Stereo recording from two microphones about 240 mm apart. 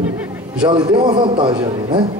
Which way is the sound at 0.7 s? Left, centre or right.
Centre.